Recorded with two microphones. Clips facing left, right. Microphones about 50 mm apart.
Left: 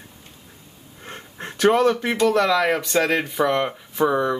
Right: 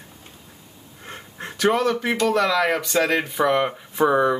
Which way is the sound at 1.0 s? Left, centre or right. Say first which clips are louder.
Even; centre.